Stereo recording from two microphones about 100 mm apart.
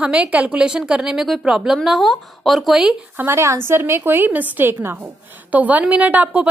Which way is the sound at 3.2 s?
30° right (ahead or behind).